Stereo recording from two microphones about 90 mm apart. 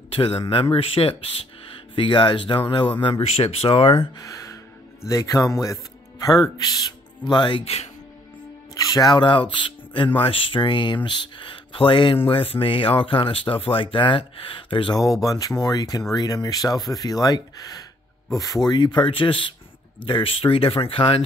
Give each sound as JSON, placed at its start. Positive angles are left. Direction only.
{"t": 0.1, "sound": "speech", "side_deg": 90}
{"t": 2.0, "sound": "speech", "side_deg": 65}
{"t": 4.2, "sound": "speech", "side_deg": 40}
{"t": 7.2, "sound": "speech", "side_deg": 60}
{"t": 8.7, "sound": "music", "side_deg": 45}
{"t": 9.2, "sound": "speech", "side_deg": 65}
{"t": 12.3, "sound": "speech", "side_deg": 85}
{"t": 15.1, "sound": "speech", "side_deg": 40}
{"t": 20.1, "sound": "speech", "side_deg": 85}